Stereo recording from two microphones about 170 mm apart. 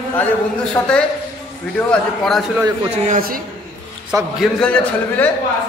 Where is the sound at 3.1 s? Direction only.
60° right (ahead or behind).